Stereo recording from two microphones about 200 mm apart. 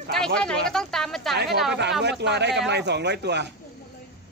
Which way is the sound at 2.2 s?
60° right (ahead or behind).